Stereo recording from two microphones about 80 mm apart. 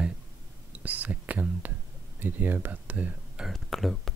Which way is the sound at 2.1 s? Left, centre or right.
Right.